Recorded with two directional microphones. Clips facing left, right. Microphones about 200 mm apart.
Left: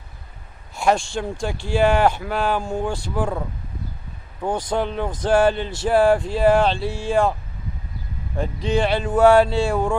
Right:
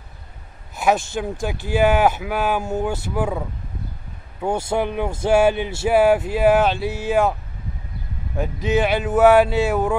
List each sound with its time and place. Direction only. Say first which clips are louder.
0.7 s a man's voice: even; 5° right (ahead or behind)
8.6 s speech: right 1 dB; 5° right (ahead or behind)